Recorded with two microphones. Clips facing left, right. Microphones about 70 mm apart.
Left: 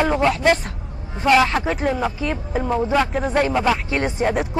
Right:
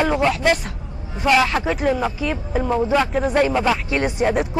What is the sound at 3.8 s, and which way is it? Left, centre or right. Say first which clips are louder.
Speech: right 1 dB; left.